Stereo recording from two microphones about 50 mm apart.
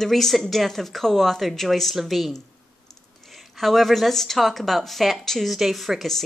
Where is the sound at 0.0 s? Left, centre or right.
Centre.